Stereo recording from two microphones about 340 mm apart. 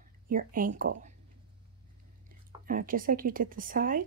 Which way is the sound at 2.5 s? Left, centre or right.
Right.